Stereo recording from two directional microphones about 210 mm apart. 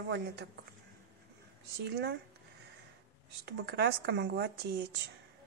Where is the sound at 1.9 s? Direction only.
55° right (ahead or behind).